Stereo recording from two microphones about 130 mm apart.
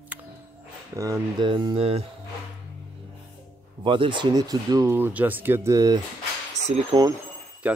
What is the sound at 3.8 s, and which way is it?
Speech, 40° right (ahead or behind).